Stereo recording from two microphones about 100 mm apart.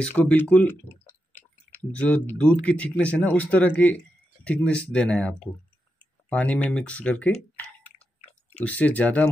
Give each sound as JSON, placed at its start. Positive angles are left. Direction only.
{"t": 0.1, "sound": "speech", "side_deg": 20}